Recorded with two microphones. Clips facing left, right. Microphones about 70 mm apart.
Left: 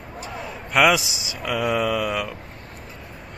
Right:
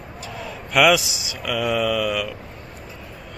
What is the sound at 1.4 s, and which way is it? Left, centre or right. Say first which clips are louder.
Speech: even; left.